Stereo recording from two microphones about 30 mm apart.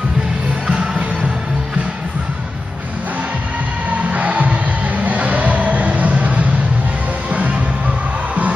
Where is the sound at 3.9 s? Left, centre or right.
Right.